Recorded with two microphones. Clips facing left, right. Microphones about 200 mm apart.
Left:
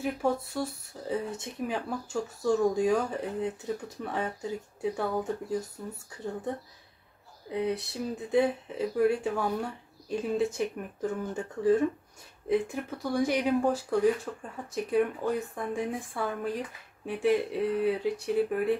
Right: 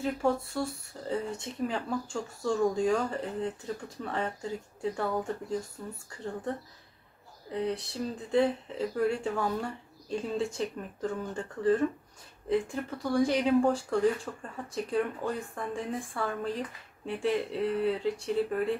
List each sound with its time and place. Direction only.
0.0 s speech: 5° left (ahead or behind)
7.5 s speech: 10° left (ahead or behind)